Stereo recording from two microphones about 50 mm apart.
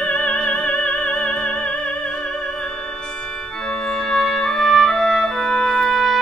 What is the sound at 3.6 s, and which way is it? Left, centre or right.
Music, centre.